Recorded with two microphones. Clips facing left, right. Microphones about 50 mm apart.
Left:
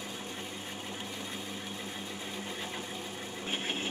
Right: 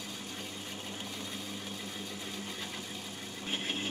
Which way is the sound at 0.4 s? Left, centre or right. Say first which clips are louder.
Left 2 dB; centre.